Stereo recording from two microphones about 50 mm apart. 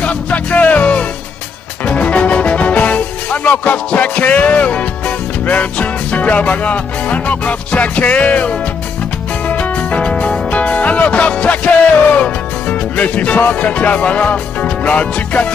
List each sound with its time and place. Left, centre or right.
0.0 s music: left